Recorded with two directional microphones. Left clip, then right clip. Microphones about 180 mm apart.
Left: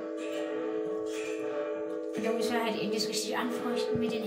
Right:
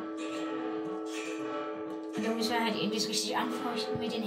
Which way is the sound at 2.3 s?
15° left (ahead or behind).